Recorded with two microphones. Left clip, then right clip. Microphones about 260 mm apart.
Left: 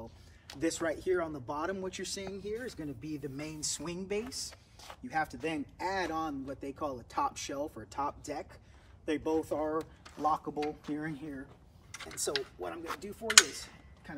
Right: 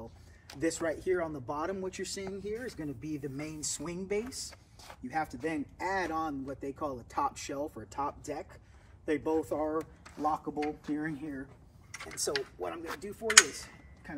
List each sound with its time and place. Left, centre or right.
0.0 s speech: centre
4.4 s a sound: left
5.2 s speech: centre